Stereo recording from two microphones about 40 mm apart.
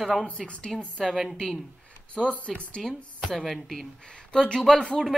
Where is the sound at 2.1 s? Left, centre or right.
Left.